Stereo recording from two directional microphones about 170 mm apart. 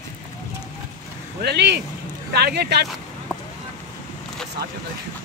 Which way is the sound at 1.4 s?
80° right.